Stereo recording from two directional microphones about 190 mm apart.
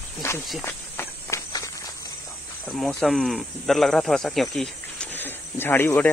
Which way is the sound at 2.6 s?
Centre (ahead or behind).